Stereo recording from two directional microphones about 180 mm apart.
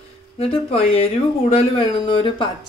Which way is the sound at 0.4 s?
30° left (ahead or behind).